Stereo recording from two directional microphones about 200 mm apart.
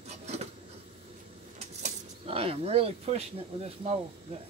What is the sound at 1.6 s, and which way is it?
Speech, 30° right (ahead or behind).